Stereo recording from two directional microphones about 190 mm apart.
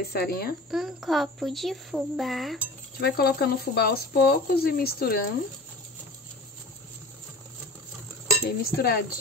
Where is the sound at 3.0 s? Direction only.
55° left (ahead or behind).